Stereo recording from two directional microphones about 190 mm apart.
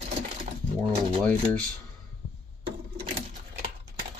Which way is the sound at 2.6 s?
30° right (ahead or behind).